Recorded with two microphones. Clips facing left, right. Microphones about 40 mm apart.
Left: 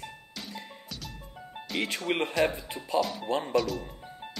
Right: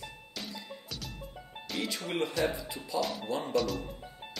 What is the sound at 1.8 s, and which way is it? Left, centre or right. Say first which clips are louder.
Speech: left 3 dB; left.